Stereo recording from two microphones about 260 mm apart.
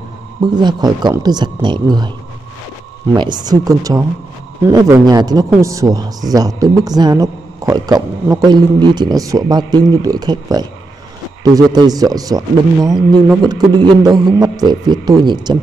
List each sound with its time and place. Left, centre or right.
0.4 s speech: centre
3.2 s speech: centre